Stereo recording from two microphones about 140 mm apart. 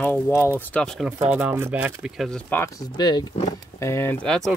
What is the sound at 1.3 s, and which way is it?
Speech, 15° right (ahead or behind).